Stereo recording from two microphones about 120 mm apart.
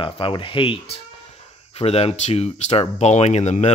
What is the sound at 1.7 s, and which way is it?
Speech, 60° left (ahead or behind).